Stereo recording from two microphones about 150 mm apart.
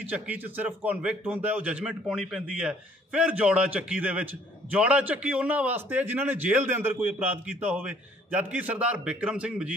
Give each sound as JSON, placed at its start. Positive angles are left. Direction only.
{"t": 0.1, "sound": "a man's voice", "side_deg": -10}